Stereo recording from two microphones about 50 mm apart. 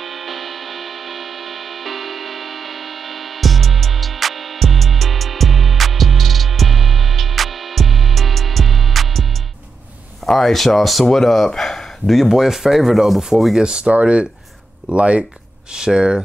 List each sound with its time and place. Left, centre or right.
0.0 s music: centre
10.2 s speech: centre
12.2 s speech: centre
13.6 s speech: centre